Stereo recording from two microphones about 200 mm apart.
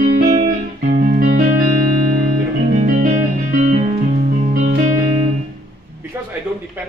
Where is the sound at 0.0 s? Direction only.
50° right (ahead or behind).